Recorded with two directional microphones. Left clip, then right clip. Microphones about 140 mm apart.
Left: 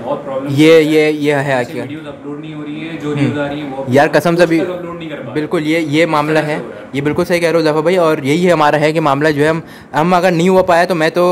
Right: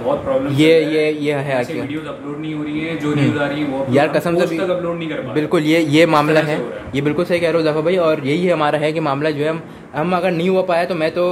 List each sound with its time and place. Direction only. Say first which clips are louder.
0.5 s a man's voice: left 6 dB; 25° left (ahead or behind)
3.9 s speech: left 6 dB; 35° left (ahead or behind)
5.3 s a man's voice: even; 5° left (ahead or behind)
6.3 s a man's voice: left 1 dB; 15° left (ahead or behind)
7.2 s speech: left 4 dB; 30° left (ahead or behind)